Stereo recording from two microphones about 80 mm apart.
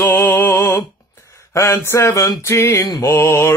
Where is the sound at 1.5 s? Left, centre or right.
Left.